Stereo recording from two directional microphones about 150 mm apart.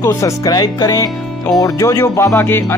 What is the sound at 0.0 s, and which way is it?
Speech, 20° left (ahead or behind).